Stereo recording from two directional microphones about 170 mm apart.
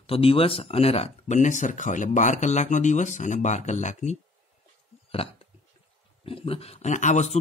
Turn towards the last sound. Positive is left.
turn(degrees=40)  # may be behind; listen again after turning